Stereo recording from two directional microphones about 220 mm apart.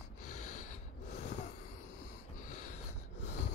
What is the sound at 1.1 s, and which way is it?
Snort, 35° left (ahead or behind).